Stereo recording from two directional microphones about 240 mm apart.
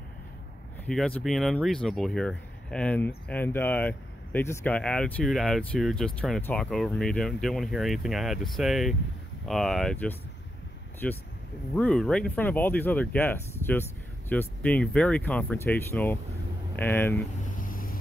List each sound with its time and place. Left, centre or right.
0.8 s speech: centre
17.5 s vehicle: left